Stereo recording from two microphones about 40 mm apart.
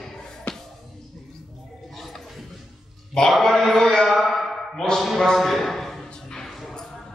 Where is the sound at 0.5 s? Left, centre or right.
Left.